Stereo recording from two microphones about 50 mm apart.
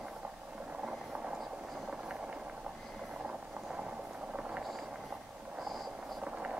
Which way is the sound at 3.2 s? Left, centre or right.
Centre.